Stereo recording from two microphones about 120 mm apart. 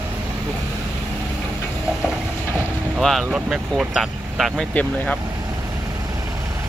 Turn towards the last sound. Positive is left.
turn(degrees=10)  # may be behind; listen again after turning